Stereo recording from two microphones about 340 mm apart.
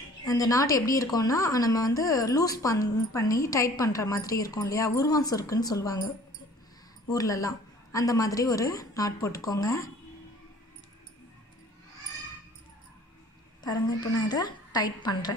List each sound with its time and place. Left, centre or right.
0.2 s speech: centre
7.1 s speech: centre
13.7 s speech: centre